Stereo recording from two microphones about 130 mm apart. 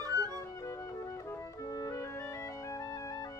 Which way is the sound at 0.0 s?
25° right (ahead or behind).